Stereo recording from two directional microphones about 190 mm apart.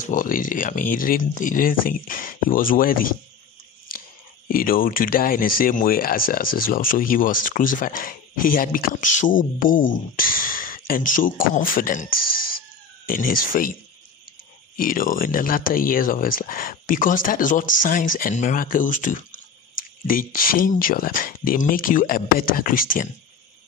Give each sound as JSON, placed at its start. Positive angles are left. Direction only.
{"t": 0.0, "sound": "speech", "side_deg": 45}
{"t": 4.5, "sound": "speech", "side_deg": 50}
{"t": 14.8, "sound": "speech", "side_deg": 45}